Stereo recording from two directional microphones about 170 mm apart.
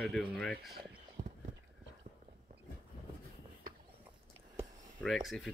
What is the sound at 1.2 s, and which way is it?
Clip-clop, 40° right (ahead or behind).